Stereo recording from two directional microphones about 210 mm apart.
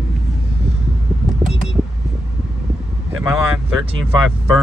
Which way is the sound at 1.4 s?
Centre (ahead or behind).